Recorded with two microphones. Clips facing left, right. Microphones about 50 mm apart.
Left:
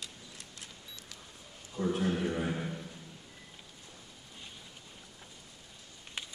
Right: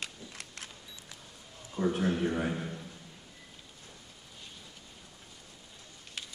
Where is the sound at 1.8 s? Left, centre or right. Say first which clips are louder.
Right 2 dB; right.